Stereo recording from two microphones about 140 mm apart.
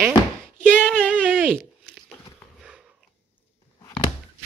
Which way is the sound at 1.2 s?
10° right (ahead or behind).